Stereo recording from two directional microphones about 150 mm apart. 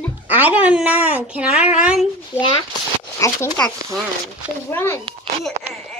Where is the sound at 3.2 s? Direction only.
20° left (ahead or behind).